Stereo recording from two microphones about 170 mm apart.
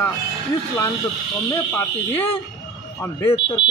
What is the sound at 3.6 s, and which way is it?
Speech, 90° left.